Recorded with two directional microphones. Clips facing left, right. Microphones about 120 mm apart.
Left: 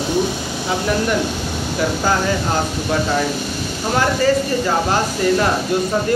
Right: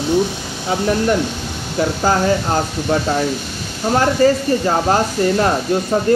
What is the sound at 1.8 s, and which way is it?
Speech, 35° right (ahead or behind).